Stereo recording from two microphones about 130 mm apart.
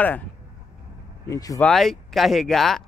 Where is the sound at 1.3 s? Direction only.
25° left (ahead or behind).